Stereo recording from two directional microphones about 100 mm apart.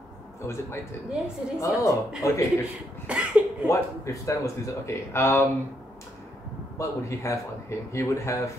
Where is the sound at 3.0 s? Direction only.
10° right (ahead or behind).